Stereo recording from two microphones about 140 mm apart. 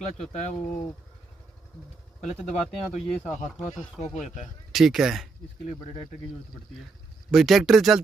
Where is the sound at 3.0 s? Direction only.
5° left (ahead or behind).